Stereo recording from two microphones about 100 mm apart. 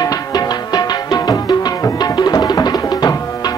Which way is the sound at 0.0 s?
40° left (ahead or behind).